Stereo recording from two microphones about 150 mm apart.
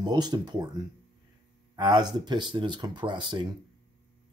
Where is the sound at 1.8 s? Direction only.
30° right (ahead or behind).